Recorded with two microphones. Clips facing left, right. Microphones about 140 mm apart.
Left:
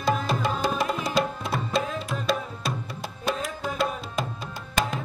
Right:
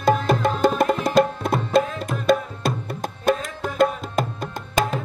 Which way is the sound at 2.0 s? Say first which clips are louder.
Right 7 dB; 50° right (ahead or behind).